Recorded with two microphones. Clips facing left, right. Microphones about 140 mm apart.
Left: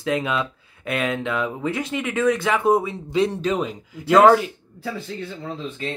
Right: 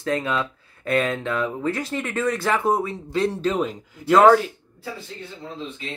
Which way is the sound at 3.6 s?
Centre (ahead or behind).